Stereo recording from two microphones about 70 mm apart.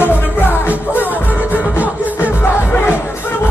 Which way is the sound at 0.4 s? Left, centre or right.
Left.